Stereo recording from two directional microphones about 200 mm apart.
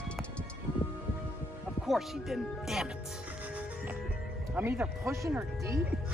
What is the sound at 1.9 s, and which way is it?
Speech, centre (ahead or behind).